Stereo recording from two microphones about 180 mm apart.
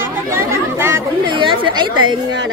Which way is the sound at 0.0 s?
10° right (ahead or behind).